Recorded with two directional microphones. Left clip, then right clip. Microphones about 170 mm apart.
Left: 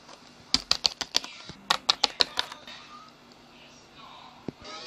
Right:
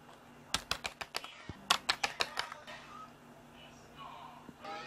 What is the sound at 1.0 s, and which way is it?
Typing, 25° left (ahead or behind).